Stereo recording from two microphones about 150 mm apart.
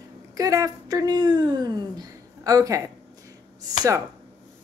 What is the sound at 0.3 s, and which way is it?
Speech, 25° right (ahead or behind).